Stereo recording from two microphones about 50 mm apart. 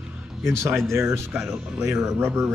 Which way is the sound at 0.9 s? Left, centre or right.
Right.